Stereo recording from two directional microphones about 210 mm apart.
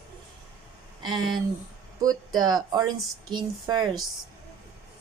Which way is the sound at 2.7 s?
20° right (ahead or behind).